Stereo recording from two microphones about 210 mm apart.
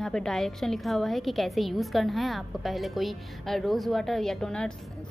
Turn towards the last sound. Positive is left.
turn(degrees=5)  # may be behind; listen again after turning